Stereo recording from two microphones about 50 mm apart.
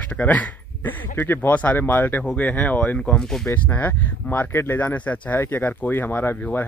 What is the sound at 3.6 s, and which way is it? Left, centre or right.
Speech, left.